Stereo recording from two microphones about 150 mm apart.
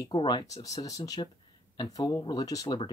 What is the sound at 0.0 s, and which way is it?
Speech, 30° left (ahead or behind).